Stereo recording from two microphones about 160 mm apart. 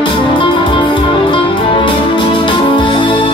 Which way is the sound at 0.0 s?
30° left (ahead or behind).